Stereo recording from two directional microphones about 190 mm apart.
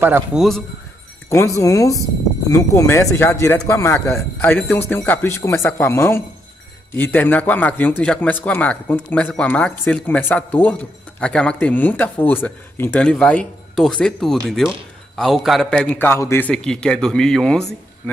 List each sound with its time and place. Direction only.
0.0 s a man's voice: 10° right (ahead or behind)
1.3 s a man's voice: 15° left (ahead or behind)